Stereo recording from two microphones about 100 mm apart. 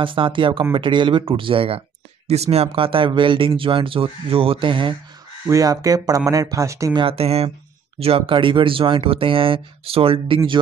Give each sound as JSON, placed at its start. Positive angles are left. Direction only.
{"t": 0.0, "sound": "speech", "side_deg": -55}
{"t": 2.2, "sound": "speech", "side_deg": -90}
{"t": 5.5, "sound": "speech", "side_deg": -35}
{"t": 6.9, "sound": "speech", "side_deg": -50}
{"t": 7.2, "sound": "speech", "side_deg": -80}
{"t": 8.0, "sound": "speech", "side_deg": -70}